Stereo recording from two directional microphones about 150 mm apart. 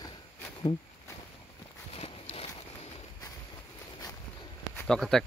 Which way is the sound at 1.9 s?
40° left (ahead or behind).